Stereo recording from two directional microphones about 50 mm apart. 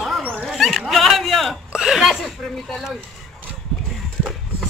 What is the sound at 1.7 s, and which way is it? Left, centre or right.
Chuckle, centre.